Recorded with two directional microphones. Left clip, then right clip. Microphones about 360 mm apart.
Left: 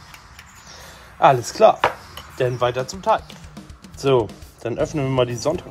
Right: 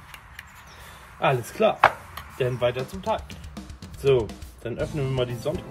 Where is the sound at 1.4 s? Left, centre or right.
Left.